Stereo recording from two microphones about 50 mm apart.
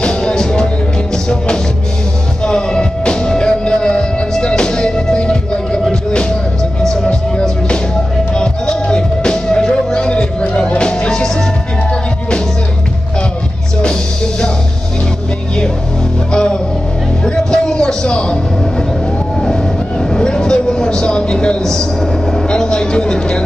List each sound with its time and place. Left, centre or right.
0.0 s music: centre
13.8 s music: centre
16.3 s music: centre
19.4 s vehicle: centre